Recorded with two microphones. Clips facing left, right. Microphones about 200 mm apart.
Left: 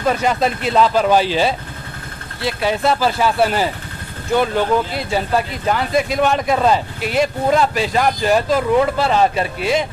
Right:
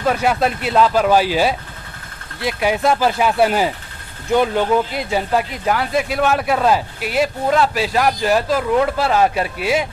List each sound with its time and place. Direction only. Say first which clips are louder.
0.0 s speech: even; 5° right (ahead or behind)
4.9 s speech: even; 15° right (ahead or behind)